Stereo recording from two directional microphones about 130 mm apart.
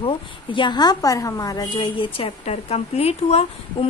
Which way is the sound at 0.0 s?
40° left (ahead or behind).